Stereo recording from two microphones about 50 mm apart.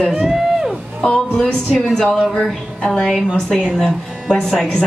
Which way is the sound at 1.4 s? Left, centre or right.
Centre.